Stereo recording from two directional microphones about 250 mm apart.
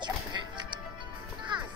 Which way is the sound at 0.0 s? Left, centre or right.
Centre.